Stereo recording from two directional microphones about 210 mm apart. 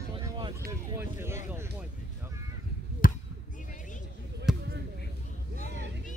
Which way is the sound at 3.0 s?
40° left (ahead or behind).